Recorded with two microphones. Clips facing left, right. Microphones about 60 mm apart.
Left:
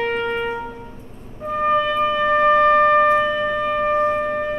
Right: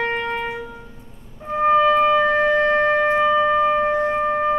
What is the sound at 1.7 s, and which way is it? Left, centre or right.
Music, right.